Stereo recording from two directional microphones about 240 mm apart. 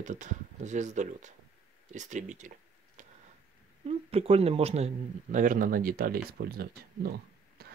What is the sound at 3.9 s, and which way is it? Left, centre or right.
Speech, right.